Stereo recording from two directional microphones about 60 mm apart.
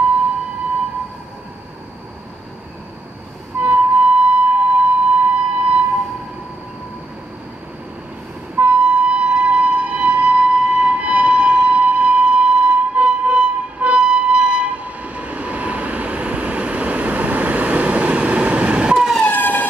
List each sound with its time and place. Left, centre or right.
3.5 s music: right
8.5 s train: right
19.2 s emergency vehicle: left